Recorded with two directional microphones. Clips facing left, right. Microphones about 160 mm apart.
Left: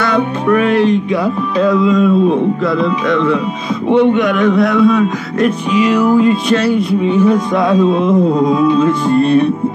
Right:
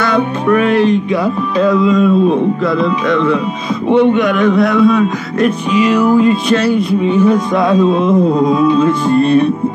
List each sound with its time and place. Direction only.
0.0 s music: 35° right (ahead or behind)